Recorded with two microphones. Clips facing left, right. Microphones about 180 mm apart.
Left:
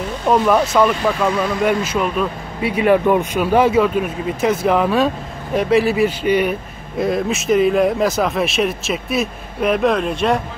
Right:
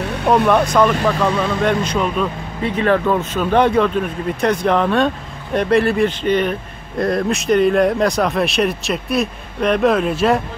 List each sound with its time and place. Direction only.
0.0 s vehicle: 65° right (ahead or behind)
0.5 s speech: 5° left (ahead or behind)